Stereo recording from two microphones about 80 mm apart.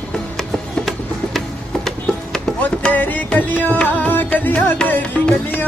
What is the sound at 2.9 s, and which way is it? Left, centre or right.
Music, left.